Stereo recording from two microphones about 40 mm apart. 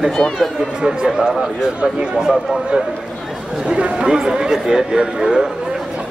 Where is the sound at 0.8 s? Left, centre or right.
Right.